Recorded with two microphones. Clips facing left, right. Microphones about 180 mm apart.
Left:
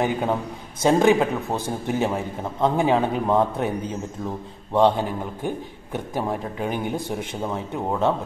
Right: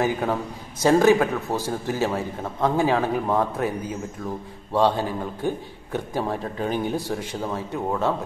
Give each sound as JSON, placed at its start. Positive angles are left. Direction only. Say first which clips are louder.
{"t": 0.0, "sound": "a man's voice", "louder": "even", "side_deg": 20}